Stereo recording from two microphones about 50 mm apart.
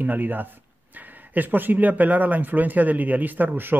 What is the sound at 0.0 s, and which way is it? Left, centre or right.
Speech, right.